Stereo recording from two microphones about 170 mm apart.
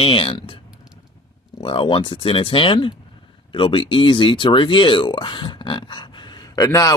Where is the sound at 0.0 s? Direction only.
35° left (ahead or behind).